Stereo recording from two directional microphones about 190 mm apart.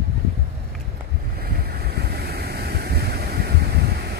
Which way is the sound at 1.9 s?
55° right (ahead or behind).